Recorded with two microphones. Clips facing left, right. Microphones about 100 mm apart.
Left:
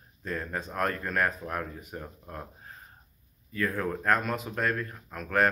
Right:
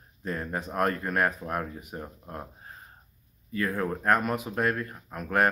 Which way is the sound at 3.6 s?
15° right (ahead or behind).